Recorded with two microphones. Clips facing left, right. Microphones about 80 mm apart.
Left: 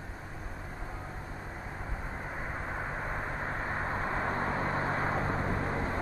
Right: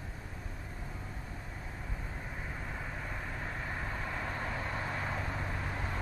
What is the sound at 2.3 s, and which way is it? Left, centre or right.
Vehicle, left.